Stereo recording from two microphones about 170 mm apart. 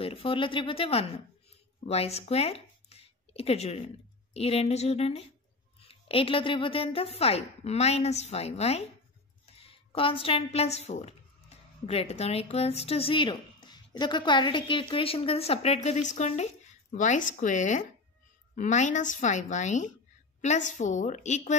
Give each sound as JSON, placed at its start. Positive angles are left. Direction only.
{"t": 0.0, "sound": "a woman's voice", "side_deg": 35}